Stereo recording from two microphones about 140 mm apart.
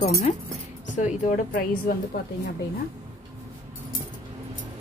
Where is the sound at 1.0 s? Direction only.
55° left (ahead or behind).